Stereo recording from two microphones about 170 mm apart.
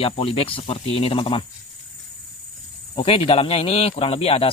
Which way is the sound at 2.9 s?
35° left (ahead or behind).